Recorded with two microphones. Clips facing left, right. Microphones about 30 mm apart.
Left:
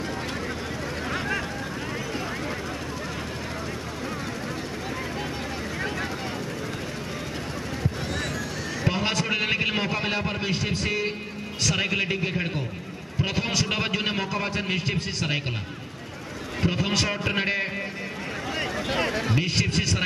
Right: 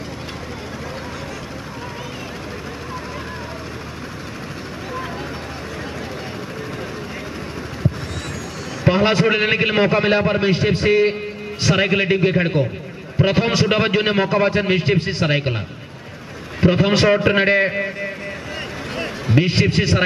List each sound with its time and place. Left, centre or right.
8.8 s a man's voice: right
16.6 s a man's voice: right
19.3 s a man's voice: right